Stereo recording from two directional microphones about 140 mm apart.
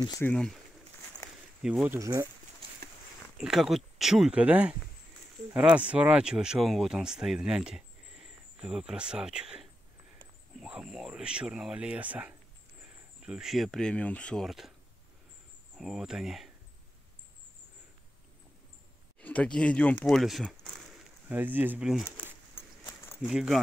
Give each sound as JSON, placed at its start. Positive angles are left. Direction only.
{"t": 0.2, "sound": "speech", "side_deg": 5}
{"t": 1.6, "sound": "speech", "side_deg": -5}
{"t": 2.0, "sound": "speech", "side_deg": -25}
{"t": 3.3, "sound": "speech", "side_deg": -5}
{"t": 15.8, "sound": "speech", "side_deg": 0}
{"t": 19.1, "sound": "speech", "side_deg": 10}
{"t": 21.3, "sound": "speech", "side_deg": -15}
{"t": 23.2, "sound": "speech", "side_deg": -5}